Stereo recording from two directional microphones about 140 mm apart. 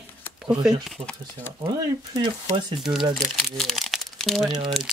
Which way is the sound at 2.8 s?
5° right (ahead or behind).